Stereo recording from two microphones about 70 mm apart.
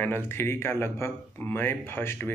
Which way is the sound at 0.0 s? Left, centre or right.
Left.